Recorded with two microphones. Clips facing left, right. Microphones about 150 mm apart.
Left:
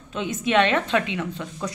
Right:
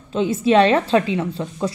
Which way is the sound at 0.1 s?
30° right (ahead or behind).